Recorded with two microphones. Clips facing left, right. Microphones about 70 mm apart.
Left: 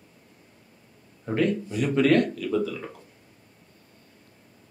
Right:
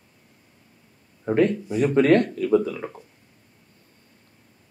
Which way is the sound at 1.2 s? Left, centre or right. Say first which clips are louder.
Right 4 dB; right.